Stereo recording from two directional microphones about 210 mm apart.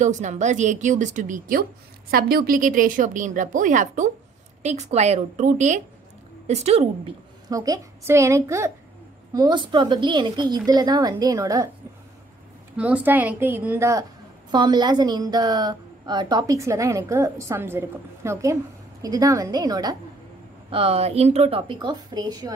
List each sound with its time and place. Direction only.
0.0 s a woman's voice: 35° right (ahead or behind)
7.4 s a woman's voice: 15° right (ahead or behind)
12.7 s a woman's voice: 5° right (ahead or behind)
20.7 s a woman's voice: 30° right (ahead or behind)